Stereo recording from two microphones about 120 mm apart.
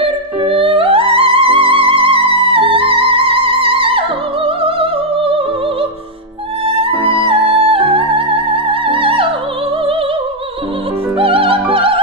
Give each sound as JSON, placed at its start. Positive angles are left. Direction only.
{"t": 0.0, "sound": "music", "side_deg": -50}
{"t": 6.8, "sound": "music", "side_deg": -50}
{"t": 11.1, "sound": "music", "side_deg": -50}